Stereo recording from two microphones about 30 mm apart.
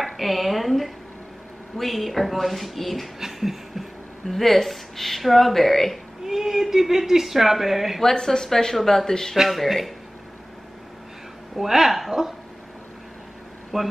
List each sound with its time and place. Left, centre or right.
0.0 s a sound: centre
1.8 s speech: centre
3.2 s a sound: centre
4.3 s speech: centre
6.2 s speech: centre
8.0 s speech: centre
11.5 s speech: centre
13.7 s speech: centre